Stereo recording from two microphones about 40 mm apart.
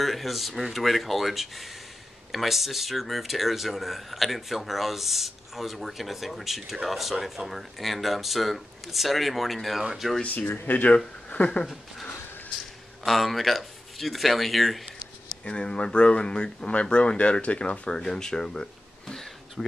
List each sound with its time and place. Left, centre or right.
0.0 s speech: centre
10.3 s speech: left
11.2 s speech: left
13.0 s speech: centre
15.4 s speech: left
17.9 s speech: centre